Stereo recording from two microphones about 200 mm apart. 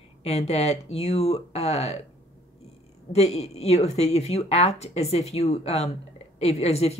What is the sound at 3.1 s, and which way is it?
Speech, 30° left (ahead or behind).